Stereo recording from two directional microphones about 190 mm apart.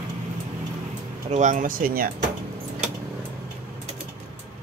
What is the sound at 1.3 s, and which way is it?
Speech, 40° right (ahead or behind).